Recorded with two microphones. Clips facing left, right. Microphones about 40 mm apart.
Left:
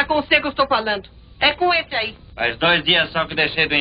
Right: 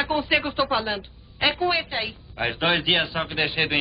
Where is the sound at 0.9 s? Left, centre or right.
Centre.